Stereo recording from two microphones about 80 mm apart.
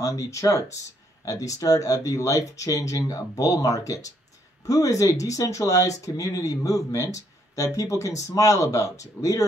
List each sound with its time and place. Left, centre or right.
0.0 s speech: left